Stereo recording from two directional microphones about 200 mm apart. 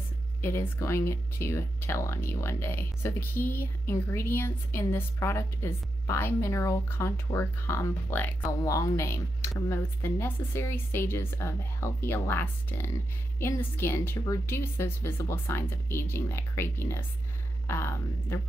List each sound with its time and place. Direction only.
0.4 s speech: 15° left (ahead or behind)